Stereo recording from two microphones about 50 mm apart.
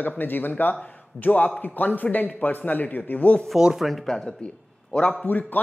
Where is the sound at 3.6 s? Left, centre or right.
Centre.